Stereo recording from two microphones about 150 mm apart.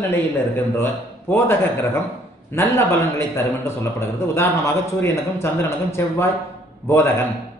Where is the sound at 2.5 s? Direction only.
15° left (ahead or behind).